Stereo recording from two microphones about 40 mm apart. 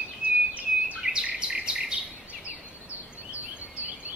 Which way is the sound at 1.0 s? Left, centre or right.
Right.